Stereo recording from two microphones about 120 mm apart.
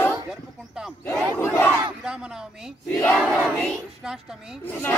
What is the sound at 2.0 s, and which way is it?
Speech, 5° right (ahead or behind).